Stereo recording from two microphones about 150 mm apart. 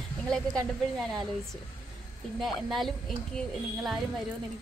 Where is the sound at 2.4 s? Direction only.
Centre (ahead or behind).